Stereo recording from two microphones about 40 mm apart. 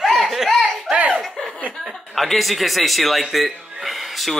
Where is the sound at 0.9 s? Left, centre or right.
Right.